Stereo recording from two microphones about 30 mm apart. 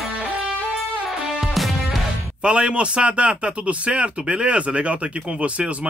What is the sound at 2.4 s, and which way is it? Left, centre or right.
A man's voice, right.